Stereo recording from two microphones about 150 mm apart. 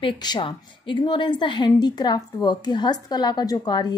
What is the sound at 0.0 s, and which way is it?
A woman's voice, 30° left (ahead or behind).